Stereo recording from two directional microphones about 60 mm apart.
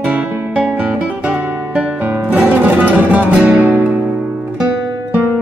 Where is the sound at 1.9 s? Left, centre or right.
Right.